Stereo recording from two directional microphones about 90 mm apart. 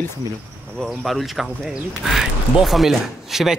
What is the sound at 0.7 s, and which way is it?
Speech, centre (ahead or behind).